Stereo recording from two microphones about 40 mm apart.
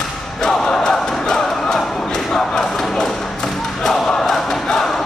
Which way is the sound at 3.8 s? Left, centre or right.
Centre.